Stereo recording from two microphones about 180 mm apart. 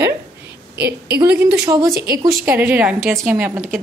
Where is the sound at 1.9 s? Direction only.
55° right (ahead or behind).